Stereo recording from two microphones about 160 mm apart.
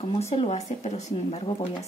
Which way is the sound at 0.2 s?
40° left (ahead or behind).